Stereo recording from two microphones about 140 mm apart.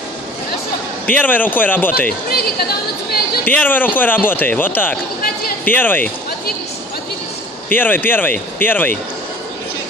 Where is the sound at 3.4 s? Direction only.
10° left (ahead or behind).